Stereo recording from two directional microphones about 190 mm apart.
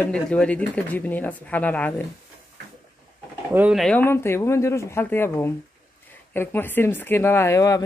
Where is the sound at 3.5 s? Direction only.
10° right (ahead or behind).